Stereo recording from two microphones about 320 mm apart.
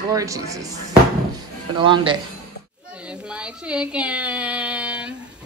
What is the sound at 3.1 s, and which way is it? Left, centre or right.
Speech, centre.